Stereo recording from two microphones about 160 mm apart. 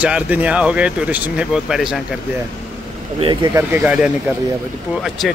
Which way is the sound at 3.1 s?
30° right (ahead or behind).